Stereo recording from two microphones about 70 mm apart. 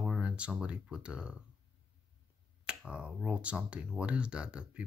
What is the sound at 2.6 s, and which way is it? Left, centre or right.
Speech, centre.